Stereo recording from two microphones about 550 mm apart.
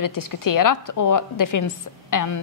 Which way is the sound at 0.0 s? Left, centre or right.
Left.